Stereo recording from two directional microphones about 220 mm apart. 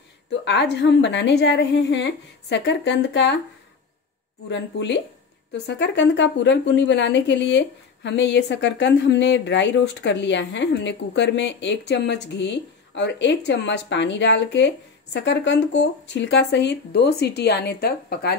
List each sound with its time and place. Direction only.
0.5 s a woman's voice: 50° left (ahead or behind)
4.5 s a woman's voice: 55° left (ahead or behind)